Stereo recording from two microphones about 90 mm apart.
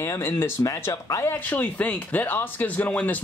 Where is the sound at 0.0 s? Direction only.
30° left (ahead or behind).